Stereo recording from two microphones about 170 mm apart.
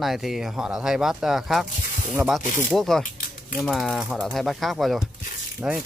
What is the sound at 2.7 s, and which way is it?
Speech, centre (ahead or behind).